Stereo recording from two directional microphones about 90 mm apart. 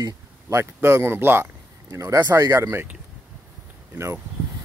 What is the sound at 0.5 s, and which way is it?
Speech, 30° right (ahead or behind).